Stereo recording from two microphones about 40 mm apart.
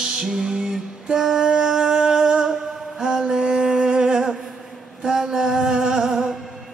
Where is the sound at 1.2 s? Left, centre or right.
Centre.